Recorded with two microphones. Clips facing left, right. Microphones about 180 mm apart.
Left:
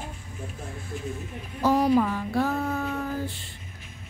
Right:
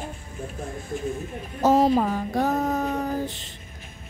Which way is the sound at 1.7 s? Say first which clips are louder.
Right 3 dB; 25° right (ahead or behind).